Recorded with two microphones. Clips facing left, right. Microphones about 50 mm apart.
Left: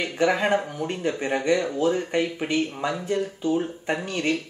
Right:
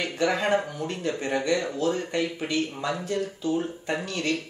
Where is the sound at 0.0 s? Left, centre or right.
Centre.